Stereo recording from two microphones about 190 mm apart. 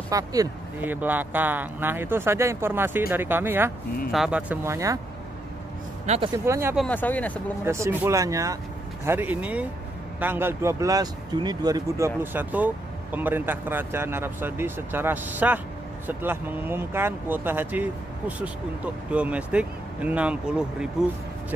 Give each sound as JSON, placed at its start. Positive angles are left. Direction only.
{"t": 0.1, "sound": "speech", "side_deg": -20}
{"t": 6.0, "sound": "speech", "side_deg": -35}
{"t": 6.3, "sound": "speech", "side_deg": -15}
{"t": 6.8, "sound": "speech", "side_deg": 10}
{"t": 7.6, "sound": "speech", "side_deg": -15}
{"t": 19.0, "sound": "speech", "side_deg": -5}